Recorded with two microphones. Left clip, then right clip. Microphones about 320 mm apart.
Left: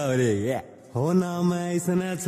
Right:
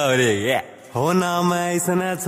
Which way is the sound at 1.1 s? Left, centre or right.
Right.